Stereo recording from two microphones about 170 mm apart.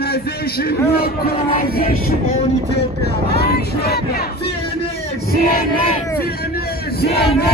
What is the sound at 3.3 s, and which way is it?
Speech, 65° left (ahead or behind).